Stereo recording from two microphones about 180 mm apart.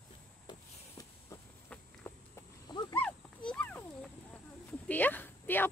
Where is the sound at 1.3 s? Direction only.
15° left (ahead or behind).